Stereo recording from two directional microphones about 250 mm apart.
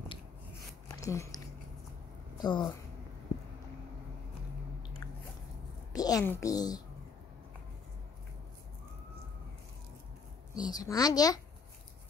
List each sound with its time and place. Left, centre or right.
0.8 s a sound: centre
2.4 s a woman's voice: centre
5.9 s a woman's voice: centre
10.5 s a woman's voice: centre